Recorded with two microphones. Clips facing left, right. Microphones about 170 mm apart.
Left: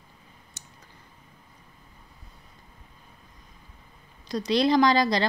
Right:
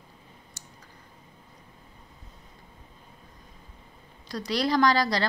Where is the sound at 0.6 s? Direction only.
20° left (ahead or behind).